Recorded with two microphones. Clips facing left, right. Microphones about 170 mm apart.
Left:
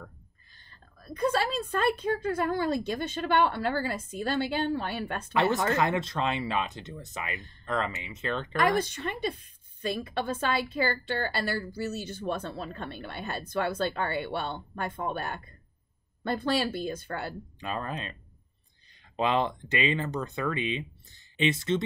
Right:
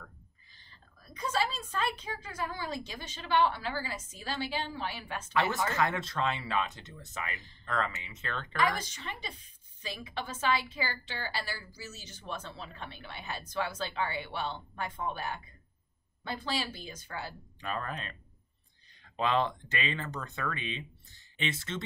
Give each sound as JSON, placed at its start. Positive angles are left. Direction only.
{"t": 0.7, "sound": "a woman's voice", "side_deg": 55}
{"t": 5.8, "sound": "speech", "side_deg": 20}
{"t": 8.5, "sound": "a woman's voice", "side_deg": 55}
{"t": 17.6, "sound": "speech", "side_deg": 20}
{"t": 19.1, "sound": "speech", "side_deg": 20}